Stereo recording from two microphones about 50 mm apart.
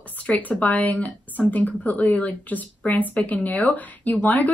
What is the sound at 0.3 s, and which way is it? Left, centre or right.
A woman's voice, left.